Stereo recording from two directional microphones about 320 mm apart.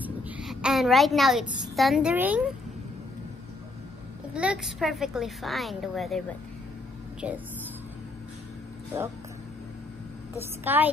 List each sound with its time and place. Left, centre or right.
0.0 s a woman's voice: centre
4.3 s a woman's voice: centre
10.4 s a woman's voice: centre